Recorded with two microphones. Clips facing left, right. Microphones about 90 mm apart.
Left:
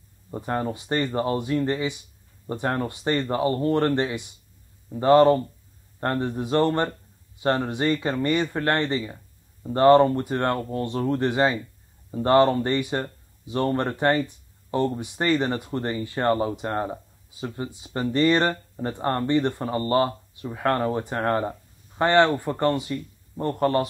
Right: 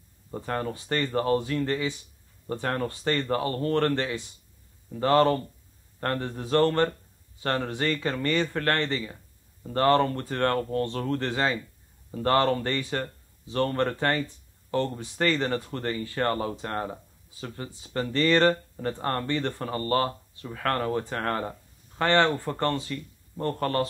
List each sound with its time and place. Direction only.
0.3 s speech: 20° left (ahead or behind)